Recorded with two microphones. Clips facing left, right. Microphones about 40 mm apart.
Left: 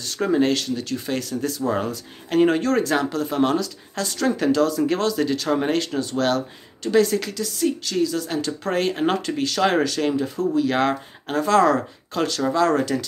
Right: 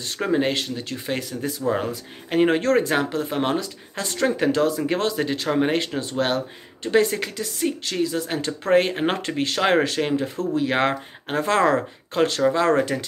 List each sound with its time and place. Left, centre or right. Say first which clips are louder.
0.0 s speech: left 2 dB; right